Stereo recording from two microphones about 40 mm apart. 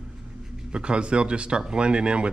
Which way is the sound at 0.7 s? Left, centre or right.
Right.